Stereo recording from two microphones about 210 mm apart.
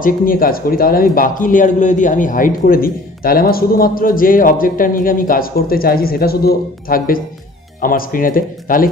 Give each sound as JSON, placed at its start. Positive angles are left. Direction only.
{"t": 0.0, "sound": "speech", "side_deg": 45}